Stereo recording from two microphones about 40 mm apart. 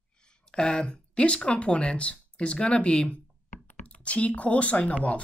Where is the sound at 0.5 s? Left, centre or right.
Left.